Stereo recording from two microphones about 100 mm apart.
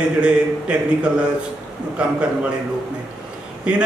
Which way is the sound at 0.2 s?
10° right (ahead or behind).